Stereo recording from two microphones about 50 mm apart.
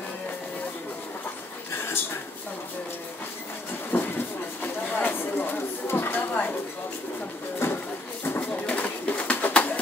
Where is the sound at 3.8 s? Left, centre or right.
Left.